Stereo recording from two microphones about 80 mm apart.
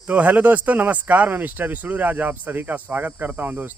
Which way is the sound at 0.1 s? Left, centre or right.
Centre.